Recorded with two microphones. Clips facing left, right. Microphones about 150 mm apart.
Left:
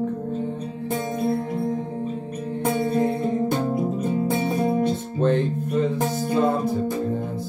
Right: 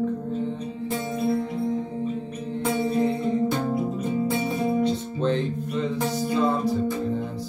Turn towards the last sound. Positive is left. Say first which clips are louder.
# left 2 dB
turn(degrees=50)  # may be behind; listen again after turning